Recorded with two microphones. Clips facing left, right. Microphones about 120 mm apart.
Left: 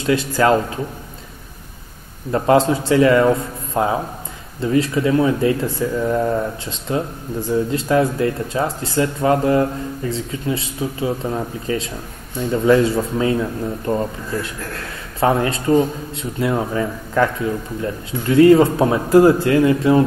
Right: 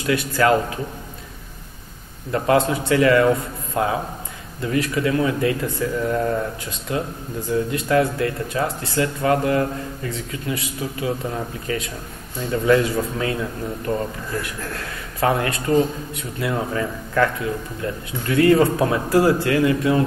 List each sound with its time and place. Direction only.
0.0 s speech: 25° left (ahead or behind)
2.3 s speech: 25° left (ahead or behind)